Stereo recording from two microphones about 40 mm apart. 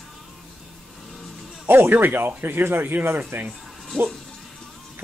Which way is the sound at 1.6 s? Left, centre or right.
Right.